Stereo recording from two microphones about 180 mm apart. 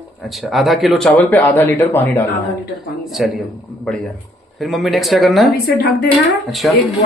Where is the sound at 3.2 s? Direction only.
Centre (ahead or behind).